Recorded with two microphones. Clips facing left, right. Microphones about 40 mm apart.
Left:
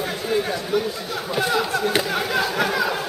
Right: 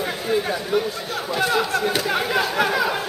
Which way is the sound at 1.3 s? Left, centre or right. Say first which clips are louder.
Right 1 dB; centre.